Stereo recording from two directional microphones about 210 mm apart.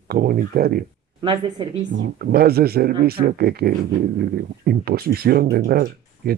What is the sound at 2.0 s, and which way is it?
Speech, 50° right (ahead or behind).